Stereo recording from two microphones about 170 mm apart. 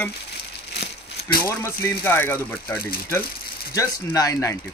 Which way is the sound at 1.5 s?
15° left (ahead or behind).